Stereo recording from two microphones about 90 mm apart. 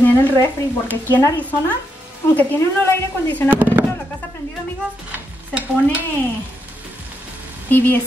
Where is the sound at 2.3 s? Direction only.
20° left (ahead or behind).